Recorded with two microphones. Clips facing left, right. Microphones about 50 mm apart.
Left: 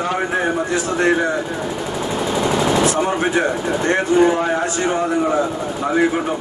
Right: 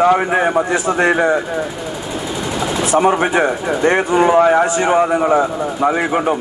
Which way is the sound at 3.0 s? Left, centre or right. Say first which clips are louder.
Right 4 dB; right.